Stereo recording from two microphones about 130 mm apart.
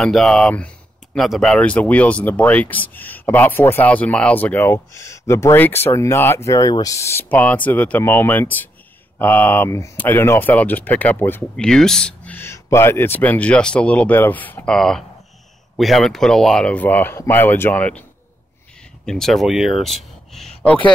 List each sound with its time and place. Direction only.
0.0 s speech: 5° left (ahead or behind)
11.5 s speech: 5° left (ahead or behind)
19.0 s speech: 5° left (ahead or behind)